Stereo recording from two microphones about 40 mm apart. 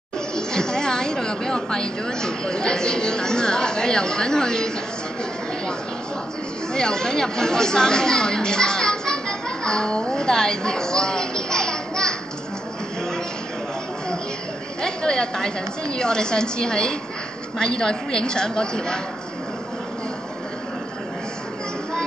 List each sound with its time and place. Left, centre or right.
0.4 s a woman's voice: centre
6.7 s a woman's voice: centre
9.7 s a sound: centre
14.8 s a woman's voice: centre